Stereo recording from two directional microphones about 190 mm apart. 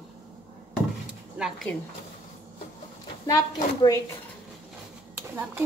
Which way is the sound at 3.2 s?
20° left (ahead or behind).